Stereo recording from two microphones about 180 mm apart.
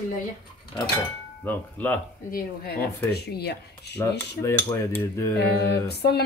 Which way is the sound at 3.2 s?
65° left (ahead or behind).